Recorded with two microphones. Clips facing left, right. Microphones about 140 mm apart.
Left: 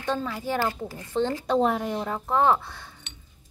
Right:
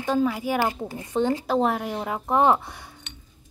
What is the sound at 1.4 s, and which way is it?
A woman's voice, 5° right (ahead or behind).